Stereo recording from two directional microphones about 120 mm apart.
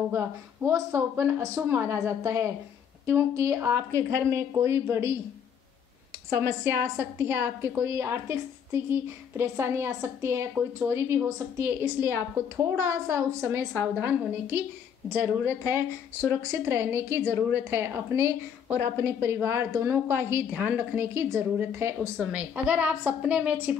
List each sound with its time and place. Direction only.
0.1 s a woman's voice: 20° right (ahead or behind)
6.3 s a woman's voice: 20° right (ahead or behind)
10.5 s a woman's voice: 10° right (ahead or behind)
11.0 s a woman's voice: 20° right (ahead or behind)